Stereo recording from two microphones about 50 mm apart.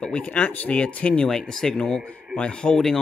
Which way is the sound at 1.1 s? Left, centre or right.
Centre.